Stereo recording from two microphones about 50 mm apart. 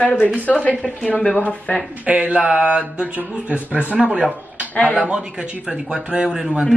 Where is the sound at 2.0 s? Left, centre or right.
Right.